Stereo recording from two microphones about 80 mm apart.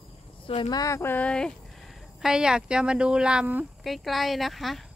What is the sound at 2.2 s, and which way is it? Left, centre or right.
Speech, centre.